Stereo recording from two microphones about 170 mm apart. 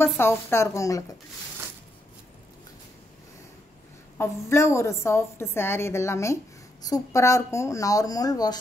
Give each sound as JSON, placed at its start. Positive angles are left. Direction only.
{"t": 0.0, "sound": "a woman's voice", "side_deg": 15}
{"t": 4.2, "sound": "a woman's voice", "side_deg": 15}